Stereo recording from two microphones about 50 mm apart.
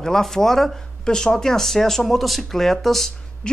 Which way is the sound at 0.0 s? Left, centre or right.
Centre.